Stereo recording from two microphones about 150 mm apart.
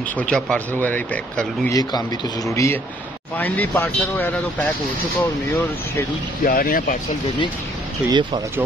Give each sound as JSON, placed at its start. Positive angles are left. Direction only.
{"t": 0.2, "sound": "speech", "side_deg": 5}
{"t": 1.7, "sound": "speech", "side_deg": 25}
{"t": 6.4, "sound": "speech", "side_deg": 75}
{"t": 8.1, "sound": "speech", "side_deg": -30}